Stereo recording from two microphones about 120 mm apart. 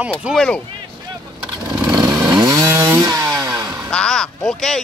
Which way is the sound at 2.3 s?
35° right (ahead or behind).